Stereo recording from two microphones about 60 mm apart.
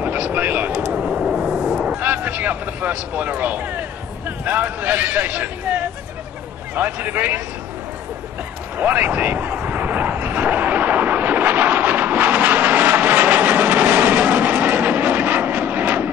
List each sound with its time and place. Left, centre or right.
0.0 s vehicle: right
0.7 s vehicle: centre
1.1 s a sound: centre
2.0 s vehicle: right
4.5 s a man's voice: right
8.7 s vehicle: right